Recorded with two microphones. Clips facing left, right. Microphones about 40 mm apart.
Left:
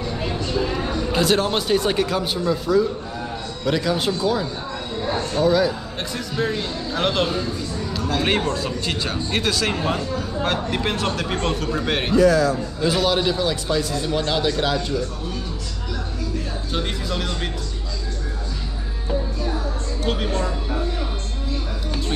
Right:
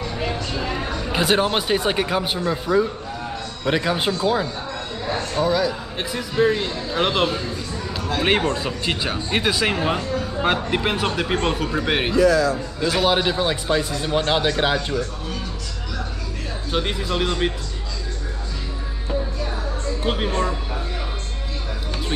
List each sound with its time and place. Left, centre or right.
0.2 s music: centre
1.1 s speech: centre
5.3 s speech: centre; by 15.0 s right
16.7 s speech: right
20.0 s speech: centre